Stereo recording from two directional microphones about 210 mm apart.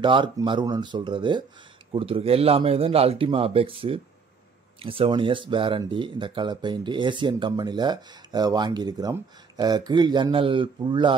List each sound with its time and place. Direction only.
0.0 s speech: 25° right (ahead or behind)